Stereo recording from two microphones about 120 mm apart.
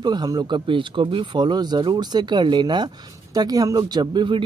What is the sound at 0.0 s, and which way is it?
Speech, 35° right (ahead or behind).